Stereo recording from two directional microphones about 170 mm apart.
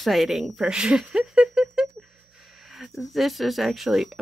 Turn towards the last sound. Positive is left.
turn(degrees=0)  # may be behind; listen again after turning